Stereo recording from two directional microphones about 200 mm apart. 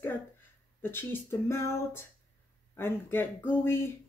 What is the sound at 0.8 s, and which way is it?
Speech, 10° left (ahead or behind).